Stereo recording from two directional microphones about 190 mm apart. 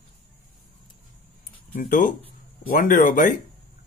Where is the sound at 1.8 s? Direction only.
45° left (ahead or behind).